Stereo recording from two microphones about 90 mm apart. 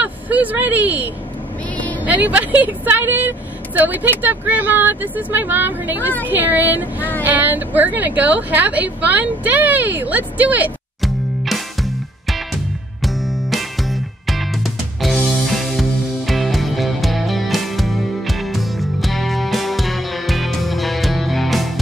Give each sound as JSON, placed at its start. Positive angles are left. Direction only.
{"t": 0.0, "sound": "speech", "side_deg": -15}
{"t": 1.8, "sound": "vehicle", "side_deg": 15}
{"t": 2.0, "sound": "speech", "side_deg": -20}
{"t": 11.0, "sound": "music", "side_deg": 0}